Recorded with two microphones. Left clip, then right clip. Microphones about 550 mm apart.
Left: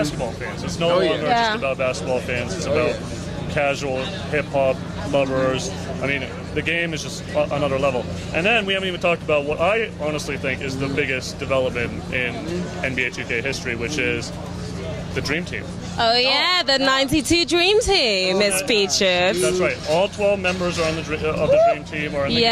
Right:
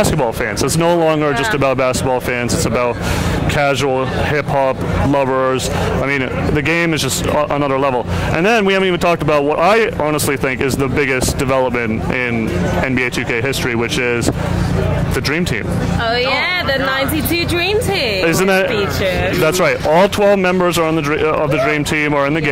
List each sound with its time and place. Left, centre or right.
8.4 s speech: right
16.1 s speech: left
19.6 s speech: right